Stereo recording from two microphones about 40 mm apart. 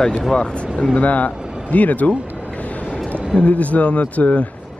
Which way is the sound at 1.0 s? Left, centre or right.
Left.